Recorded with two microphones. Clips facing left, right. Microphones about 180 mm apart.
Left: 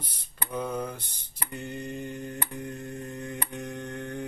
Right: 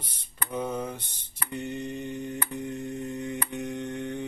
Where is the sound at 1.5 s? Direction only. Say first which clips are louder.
Right 3 dB; 25° right (ahead or behind).